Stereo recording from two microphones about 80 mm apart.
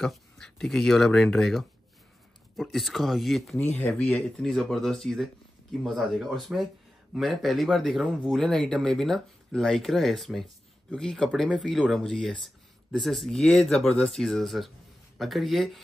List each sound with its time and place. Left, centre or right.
0.0 s speech: centre
3.5 s speech: left
4.0 s speech: centre